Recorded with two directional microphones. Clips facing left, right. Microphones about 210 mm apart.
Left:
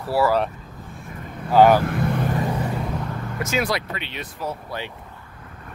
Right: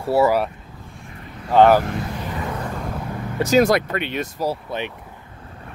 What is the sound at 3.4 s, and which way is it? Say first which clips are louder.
Speech: right 9 dB; 40° right (ahead or behind).